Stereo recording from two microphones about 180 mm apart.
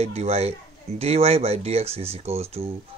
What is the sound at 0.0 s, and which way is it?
Speech, 35° right (ahead or behind).